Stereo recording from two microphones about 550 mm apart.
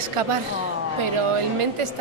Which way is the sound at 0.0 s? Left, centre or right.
Right.